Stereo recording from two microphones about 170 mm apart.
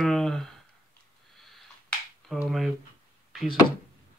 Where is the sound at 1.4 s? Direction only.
Centre (ahead or behind).